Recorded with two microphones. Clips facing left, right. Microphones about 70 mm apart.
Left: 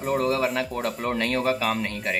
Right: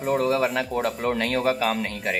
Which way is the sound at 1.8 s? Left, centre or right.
Centre.